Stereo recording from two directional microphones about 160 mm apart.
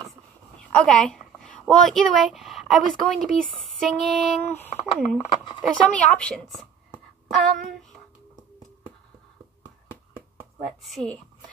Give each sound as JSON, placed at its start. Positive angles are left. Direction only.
{"t": 0.6, "sound": "speech", "side_deg": 5}
{"t": 4.4, "sound": "speech", "side_deg": 10}
{"t": 5.3, "sound": "speech", "side_deg": 30}
{"t": 5.6, "sound": "speech", "side_deg": 10}
{"t": 10.1, "sound": "a sound", "side_deg": 0}